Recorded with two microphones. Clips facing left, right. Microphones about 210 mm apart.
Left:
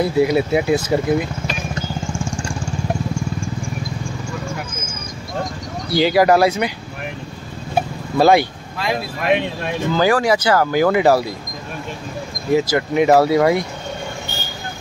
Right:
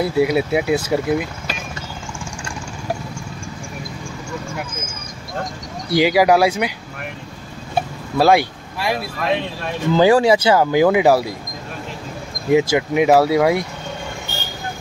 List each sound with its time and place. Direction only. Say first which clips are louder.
0.0 s speech: left 1 dB; 5° right (ahead or behind)
5.9 s speech: even; 15° right (ahead or behind)
8.2 s speech: left 1 dB; 5° right (ahead or behind)
9.9 s speech: right 4 dB; 25° right (ahead or behind)
12.5 s speech: right 1 dB; 10° right (ahead or behind)